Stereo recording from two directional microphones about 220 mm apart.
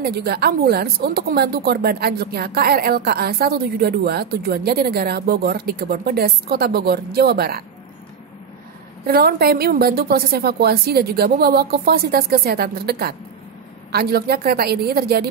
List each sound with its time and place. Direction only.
0.0 s a woman's voice: 45° right (ahead or behind)
9.0 s a woman's voice: 45° right (ahead or behind)